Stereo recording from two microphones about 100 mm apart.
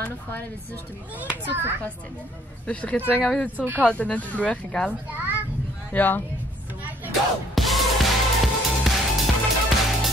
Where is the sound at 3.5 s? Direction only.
15° right (ahead or behind).